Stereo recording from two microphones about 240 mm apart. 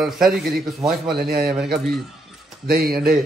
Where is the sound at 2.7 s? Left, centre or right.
Right.